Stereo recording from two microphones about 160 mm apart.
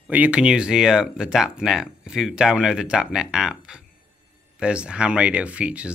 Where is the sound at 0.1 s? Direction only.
10° right (ahead or behind).